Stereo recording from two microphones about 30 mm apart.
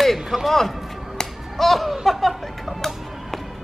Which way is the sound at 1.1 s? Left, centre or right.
Centre.